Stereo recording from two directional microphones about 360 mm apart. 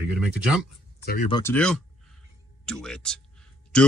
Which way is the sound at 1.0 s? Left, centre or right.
Left.